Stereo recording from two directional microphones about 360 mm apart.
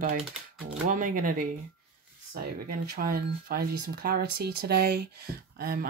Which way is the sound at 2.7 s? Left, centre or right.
Right.